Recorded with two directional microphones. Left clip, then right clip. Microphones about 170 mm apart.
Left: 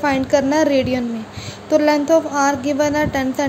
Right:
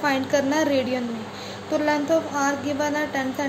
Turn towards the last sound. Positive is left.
turn(degrees=50)  # may be behind; listen again after turning